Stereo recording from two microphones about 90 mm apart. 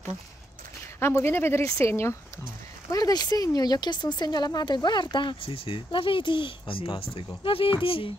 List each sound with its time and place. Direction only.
0.9 s speech: 30° left (ahead or behind)
2.9 s speech: 45° left (ahead or behind); by 8.1 s 85° left